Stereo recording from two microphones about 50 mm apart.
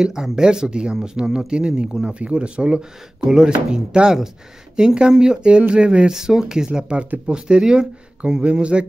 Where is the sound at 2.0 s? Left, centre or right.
Right.